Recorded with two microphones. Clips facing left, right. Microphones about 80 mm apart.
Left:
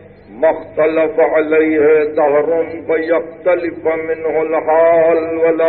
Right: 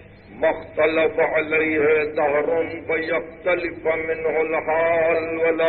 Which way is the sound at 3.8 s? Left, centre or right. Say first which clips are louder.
Left 6 dB; centre.